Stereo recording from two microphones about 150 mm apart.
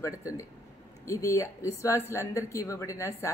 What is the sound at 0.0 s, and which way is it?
A woman's voice, 20° left (ahead or behind).